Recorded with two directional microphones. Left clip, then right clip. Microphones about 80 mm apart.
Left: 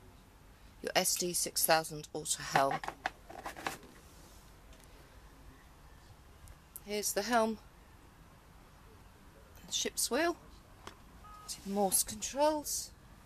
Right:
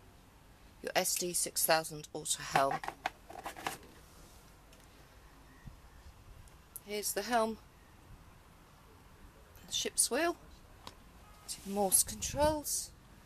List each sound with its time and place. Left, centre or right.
0.8 s speech: centre
3.0 s a sound: centre
6.9 s speech: centre
9.7 s speech: centre
11.4 s speech: centre